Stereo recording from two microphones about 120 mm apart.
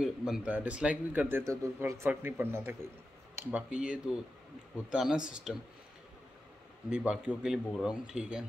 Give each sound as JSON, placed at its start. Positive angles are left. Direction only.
{"t": 0.0, "sound": "speech", "side_deg": -5}
{"t": 3.7, "sound": "speech", "side_deg": -5}
{"t": 6.9, "sound": "speech", "side_deg": -10}